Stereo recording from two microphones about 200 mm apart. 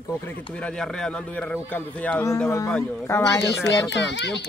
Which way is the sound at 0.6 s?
5° left (ahead or behind).